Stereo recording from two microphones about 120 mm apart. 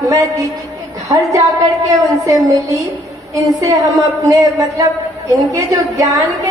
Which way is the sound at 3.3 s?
25° right (ahead or behind).